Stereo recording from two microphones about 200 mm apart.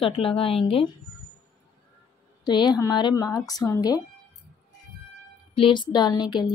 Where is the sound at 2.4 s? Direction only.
20° left (ahead or behind).